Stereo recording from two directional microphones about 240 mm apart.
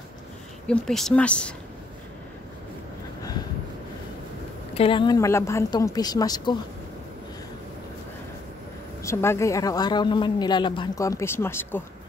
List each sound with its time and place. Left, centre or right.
0.7 s speech: centre
4.7 s speech: left
9.0 s speech: centre